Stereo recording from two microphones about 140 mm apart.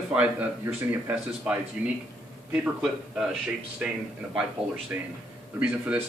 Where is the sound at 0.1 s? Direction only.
10° right (ahead or behind).